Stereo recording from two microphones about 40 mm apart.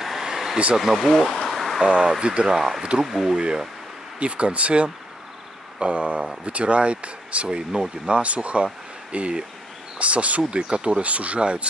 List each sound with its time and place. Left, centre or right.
0.0 s a sound: centre
0.7 s speech: centre
1.9 s speech: right
2.4 s speech: centre
2.8 s speech: right
3.1 s speech: centre
3.3 s speech: right
7.4 s speech: centre